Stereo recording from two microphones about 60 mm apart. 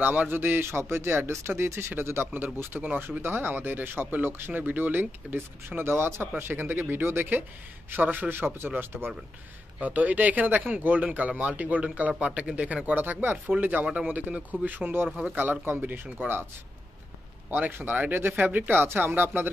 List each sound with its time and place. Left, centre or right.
0.0 s speech: right
2.8 s speech: right
9.8 s speech: right
17.5 s speech: right